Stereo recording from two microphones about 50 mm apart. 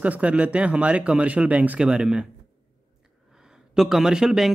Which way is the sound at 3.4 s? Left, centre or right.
Centre.